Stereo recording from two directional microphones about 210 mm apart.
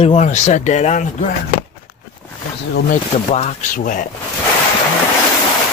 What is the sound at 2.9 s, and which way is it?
Speech, 35° left (ahead or behind).